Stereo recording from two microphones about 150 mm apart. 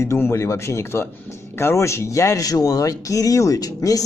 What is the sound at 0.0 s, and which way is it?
Speech, 20° left (ahead or behind).